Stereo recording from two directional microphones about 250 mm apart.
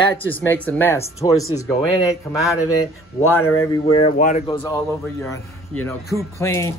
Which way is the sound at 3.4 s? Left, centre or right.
Centre.